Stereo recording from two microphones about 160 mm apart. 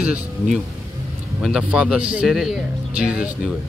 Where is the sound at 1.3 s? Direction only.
5° right (ahead or behind).